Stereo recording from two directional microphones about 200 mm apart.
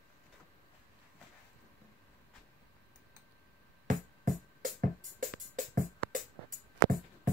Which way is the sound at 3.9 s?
40° right (ahead or behind).